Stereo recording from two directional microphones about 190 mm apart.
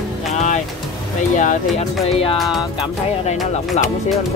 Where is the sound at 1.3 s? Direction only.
40° left (ahead or behind).